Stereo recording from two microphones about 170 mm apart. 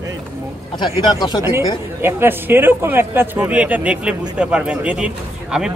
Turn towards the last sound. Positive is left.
turn(degrees=-5)  # may be behind; listen again after turning